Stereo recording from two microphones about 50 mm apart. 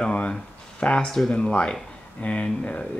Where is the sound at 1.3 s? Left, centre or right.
Left.